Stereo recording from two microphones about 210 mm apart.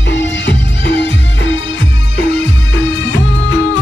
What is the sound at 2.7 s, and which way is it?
Music, 60° left (ahead or behind).